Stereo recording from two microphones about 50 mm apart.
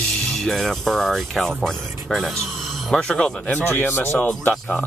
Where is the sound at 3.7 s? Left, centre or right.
Left.